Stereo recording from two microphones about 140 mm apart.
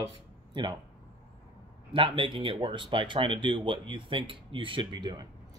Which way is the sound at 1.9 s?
35° right (ahead or behind).